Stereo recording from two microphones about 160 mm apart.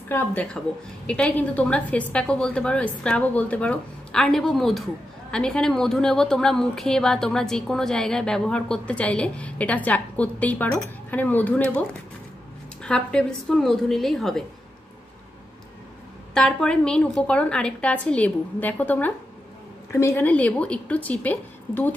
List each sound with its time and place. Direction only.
0.1 s a woman's voice: 10° left (ahead or behind)
12.8 s speech: 5° left (ahead or behind)
16.3 s a woman's voice: 5° left (ahead or behind)